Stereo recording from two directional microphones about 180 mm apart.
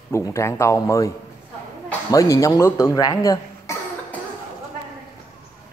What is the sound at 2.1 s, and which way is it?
Speech, 20° left (ahead or behind).